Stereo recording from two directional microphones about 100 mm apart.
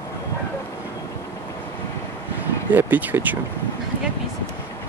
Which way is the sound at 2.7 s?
20° right (ahead or behind).